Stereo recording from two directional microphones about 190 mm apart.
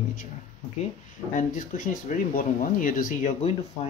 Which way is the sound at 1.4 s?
45° left (ahead or behind).